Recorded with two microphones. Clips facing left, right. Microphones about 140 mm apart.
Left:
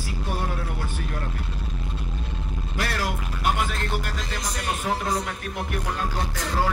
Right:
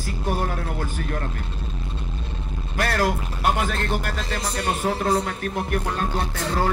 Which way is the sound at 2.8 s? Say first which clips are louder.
Right 6 dB; 50° right (ahead or behind).